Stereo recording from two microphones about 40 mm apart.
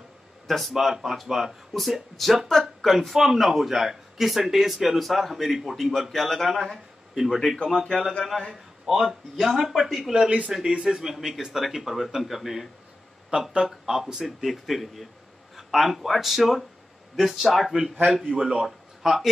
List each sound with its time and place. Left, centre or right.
0.5 s speech: centre
7.2 s speech: centre
8.3 s speech: centre
8.8 s speech: centre
10.5 s a man's voice: centre
13.3 s speech: right
13.7 s a man's voice: centre